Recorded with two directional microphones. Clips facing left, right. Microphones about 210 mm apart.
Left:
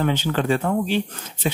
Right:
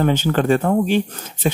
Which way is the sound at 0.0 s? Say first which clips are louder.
Right 4 dB; 45° right (ahead or behind).